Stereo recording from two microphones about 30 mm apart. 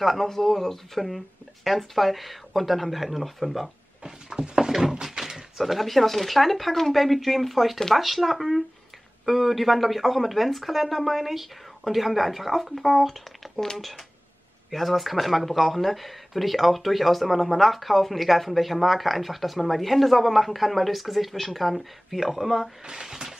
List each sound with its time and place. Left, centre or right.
0.0 s speech: centre
4.3 s a sound: right
5.0 s speech: centre
14.7 s speech: centre